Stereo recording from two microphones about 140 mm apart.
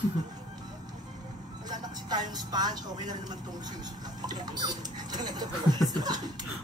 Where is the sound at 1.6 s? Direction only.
30° right (ahead or behind).